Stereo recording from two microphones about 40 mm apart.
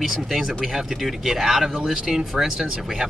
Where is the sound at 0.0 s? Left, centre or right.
Centre.